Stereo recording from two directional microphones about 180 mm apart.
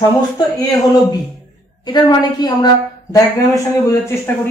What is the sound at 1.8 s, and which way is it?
A woman's voice, 25° left (ahead or behind).